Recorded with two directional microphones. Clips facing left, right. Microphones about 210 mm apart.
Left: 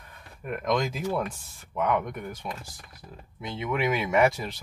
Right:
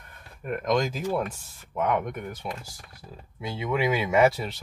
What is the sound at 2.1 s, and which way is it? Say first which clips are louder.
Speech: right 1 dB; 10° right (ahead or behind).